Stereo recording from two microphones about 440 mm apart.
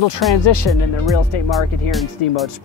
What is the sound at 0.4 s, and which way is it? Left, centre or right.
Speech, left.